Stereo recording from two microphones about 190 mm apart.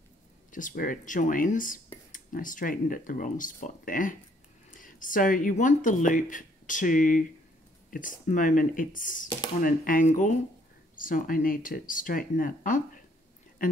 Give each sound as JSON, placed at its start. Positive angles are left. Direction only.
{"t": 0.5, "sound": "speech", "side_deg": 45}